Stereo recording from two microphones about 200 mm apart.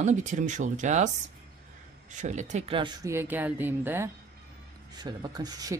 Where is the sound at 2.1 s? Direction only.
35° right (ahead or behind); by 4.0 s 10° right (ahead or behind).